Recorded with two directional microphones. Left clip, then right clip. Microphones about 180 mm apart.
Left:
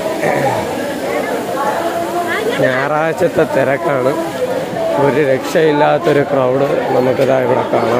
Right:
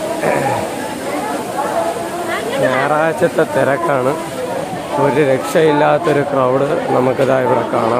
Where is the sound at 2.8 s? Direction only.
20° left (ahead or behind).